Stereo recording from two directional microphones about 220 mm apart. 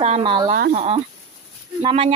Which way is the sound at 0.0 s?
25° right (ahead or behind).